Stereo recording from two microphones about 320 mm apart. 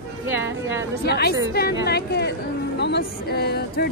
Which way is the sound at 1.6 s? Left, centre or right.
Left.